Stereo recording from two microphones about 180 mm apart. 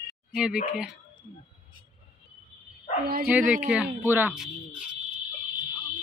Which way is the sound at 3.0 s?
55° right (ahead or behind).